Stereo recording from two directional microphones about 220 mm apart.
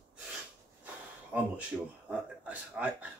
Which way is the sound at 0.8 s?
5° right (ahead or behind).